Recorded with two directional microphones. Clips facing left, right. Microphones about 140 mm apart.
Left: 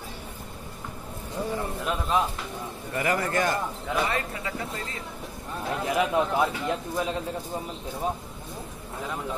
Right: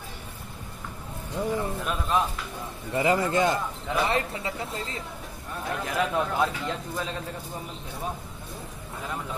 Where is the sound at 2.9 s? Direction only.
20° right (ahead or behind).